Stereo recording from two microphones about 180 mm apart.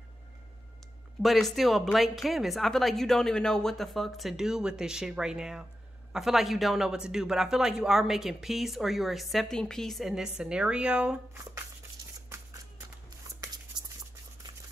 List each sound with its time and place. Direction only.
1.2 s speech: centre (ahead or behind)
12.3 s shuffling cards: 15° right (ahead or behind)
13.7 s a sound: 25° right (ahead or behind)